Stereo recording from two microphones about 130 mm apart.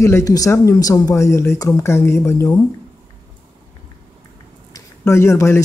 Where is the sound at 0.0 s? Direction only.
25° left (ahead or behind).